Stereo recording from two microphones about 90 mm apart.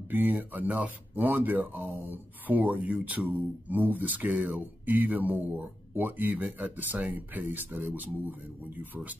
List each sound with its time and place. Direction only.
0.1 s speech: 20° right (ahead or behind)